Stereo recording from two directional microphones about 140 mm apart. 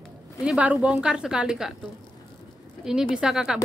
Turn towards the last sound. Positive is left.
turn(degrees=-5)  # may be behind; listen again after turning